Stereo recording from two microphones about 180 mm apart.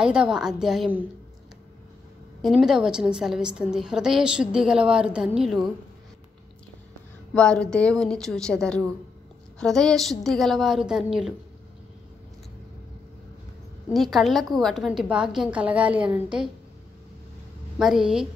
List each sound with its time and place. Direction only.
0.0 s a woman's voice: 5° right (ahead or behind)
2.4 s a woman's voice: 5° right (ahead or behind)
7.3 s a woman's voice: 5° left (ahead or behind)
13.9 s a woman's voice: centre (ahead or behind)
17.7 s a woman's voice: 5° right (ahead or behind)